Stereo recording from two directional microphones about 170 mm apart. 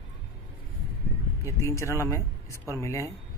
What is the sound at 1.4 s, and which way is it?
Speech, 15° left (ahead or behind).